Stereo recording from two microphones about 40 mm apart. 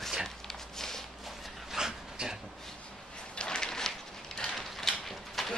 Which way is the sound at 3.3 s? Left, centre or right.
Centre.